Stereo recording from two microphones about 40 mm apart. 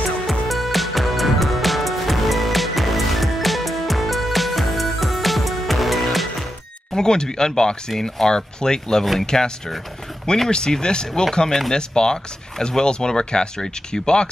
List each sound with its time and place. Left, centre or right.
0.3 s music: centre
7.0 s speech: centre
10.5 s speech: centre